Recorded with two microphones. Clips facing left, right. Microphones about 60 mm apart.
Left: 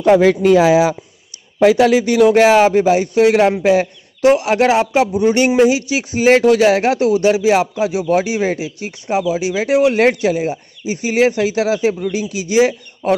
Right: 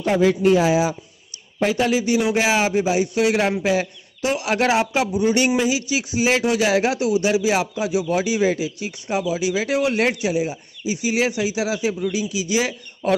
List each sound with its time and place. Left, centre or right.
0.0 s speech: left
2.2 s a man's voice: left
9.9 s a man's voice: left